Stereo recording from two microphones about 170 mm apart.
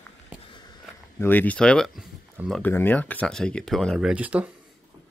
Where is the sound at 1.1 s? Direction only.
10° left (ahead or behind); by 4.5 s 10° right (ahead or behind).